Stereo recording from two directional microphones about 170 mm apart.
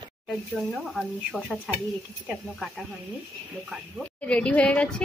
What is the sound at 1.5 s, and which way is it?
Speech, centre (ahead or behind).